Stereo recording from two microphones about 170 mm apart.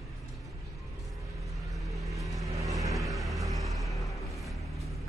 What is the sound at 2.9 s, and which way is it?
Music, centre (ahead or behind).